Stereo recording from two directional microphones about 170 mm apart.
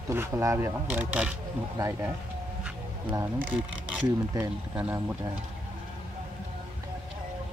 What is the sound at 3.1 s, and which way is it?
Speech, 15° right (ahead or behind).